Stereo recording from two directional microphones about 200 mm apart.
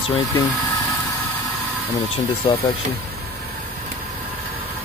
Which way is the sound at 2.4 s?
20° left (ahead or behind).